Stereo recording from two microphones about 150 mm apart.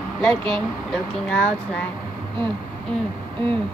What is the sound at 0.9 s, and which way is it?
Speech, 10° left (ahead or behind).